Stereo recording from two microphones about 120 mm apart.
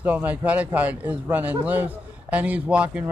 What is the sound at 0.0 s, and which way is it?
A man's voice, 15° right (ahead or behind).